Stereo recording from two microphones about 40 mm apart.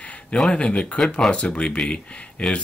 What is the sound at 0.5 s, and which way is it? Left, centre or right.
Speech, left.